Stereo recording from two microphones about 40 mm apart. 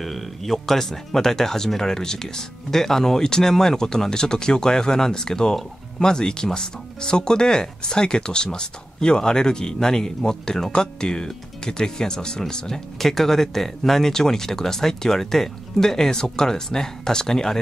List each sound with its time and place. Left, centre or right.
0.0 s speech: centre